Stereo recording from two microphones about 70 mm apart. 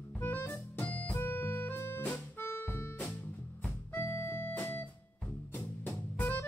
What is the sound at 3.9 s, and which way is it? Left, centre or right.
Organ, left.